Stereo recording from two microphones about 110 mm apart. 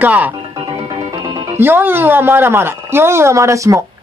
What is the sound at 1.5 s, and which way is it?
Speech, 20° right (ahead or behind).